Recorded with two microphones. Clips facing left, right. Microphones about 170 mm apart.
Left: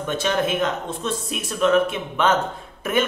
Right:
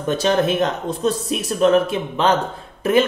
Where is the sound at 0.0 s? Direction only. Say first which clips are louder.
Right 5 dB; 35° right (ahead or behind).